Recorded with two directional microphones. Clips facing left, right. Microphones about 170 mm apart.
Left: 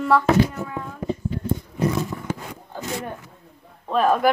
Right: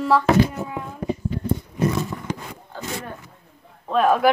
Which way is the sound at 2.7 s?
15° left (ahead or behind).